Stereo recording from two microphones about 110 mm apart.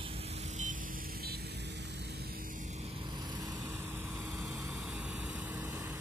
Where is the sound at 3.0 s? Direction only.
40° right (ahead or behind).